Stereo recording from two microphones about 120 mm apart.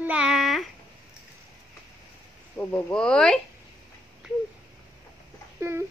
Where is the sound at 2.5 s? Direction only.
10° left (ahead or behind).